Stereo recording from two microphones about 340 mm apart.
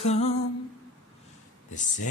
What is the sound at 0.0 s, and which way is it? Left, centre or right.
Mantra, centre.